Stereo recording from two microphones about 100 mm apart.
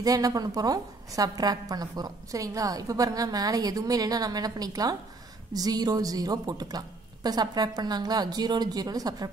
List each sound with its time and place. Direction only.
0.0 s a woman's voice: 35° right (ahead or behind)